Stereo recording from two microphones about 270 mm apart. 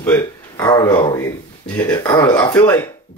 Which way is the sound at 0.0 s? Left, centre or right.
Centre.